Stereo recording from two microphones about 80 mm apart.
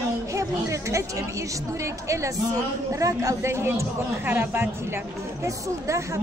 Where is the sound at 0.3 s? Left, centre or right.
Right.